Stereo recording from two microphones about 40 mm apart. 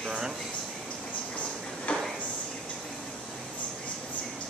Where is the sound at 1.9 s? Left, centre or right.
Left.